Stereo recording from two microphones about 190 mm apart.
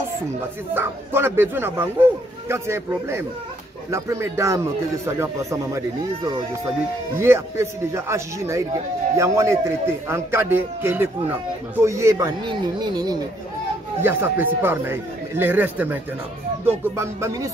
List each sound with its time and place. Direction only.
0.7 s speech: 10° right (ahead or behind)